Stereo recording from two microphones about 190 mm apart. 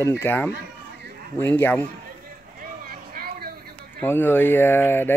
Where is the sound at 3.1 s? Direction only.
50° right (ahead or behind).